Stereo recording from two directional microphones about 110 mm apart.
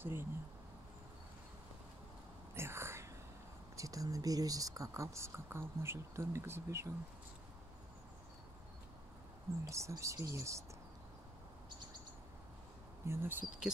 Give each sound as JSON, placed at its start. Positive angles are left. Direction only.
{"t": 0.0, "sound": "speech", "side_deg": -20}
{"t": 2.5, "sound": "whispering", "side_deg": -20}
{"t": 3.7, "sound": "speech", "side_deg": -30}
{"t": 9.7, "sound": "speech", "side_deg": -25}
{"t": 13.0, "sound": "speech", "side_deg": -20}